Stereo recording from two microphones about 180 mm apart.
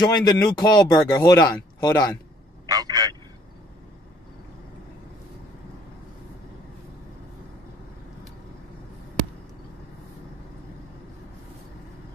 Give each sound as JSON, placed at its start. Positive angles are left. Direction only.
{"t": 0.0, "sound": "a man's voice", "side_deg": 20}
{"t": 2.6, "sound": "telephone", "side_deg": -20}